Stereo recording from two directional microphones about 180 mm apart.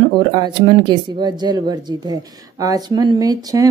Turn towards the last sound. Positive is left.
turn(degrees=-20)  # may be behind; listen again after turning